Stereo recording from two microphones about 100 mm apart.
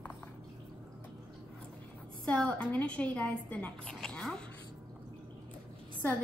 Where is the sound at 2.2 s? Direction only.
10° left (ahead or behind).